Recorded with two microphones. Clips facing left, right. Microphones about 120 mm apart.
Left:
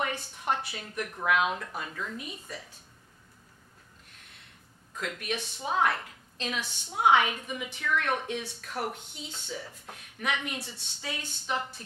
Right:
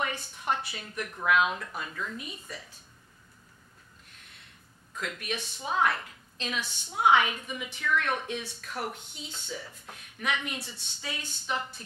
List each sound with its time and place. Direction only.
0.2 s a woman's voice: 35° left (ahead or behind)
1.7 s speech: 35° left (ahead or behind)
2.1 s a woman's voice: 50° left (ahead or behind)
5.0 s a woman's voice: 50° left (ahead or behind)
5.7 s a woman's voice: 40° left (ahead or behind)
10.2 s a woman's voice: 50° left (ahead or behind)
10.6 s a woman's voice: 35° left (ahead or behind)